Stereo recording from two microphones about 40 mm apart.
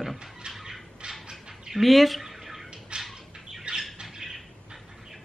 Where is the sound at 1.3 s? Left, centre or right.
Centre.